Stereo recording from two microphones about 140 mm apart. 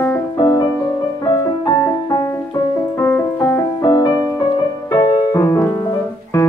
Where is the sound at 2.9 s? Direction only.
15° left (ahead or behind).